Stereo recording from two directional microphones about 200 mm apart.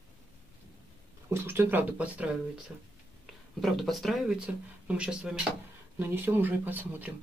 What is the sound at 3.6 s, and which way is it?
Speech, centre (ahead or behind).